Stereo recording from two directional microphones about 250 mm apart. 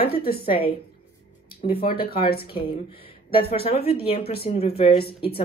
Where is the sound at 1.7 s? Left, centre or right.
Left.